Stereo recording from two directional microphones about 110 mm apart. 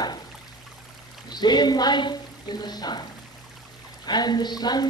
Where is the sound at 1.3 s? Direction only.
40° left (ahead or behind).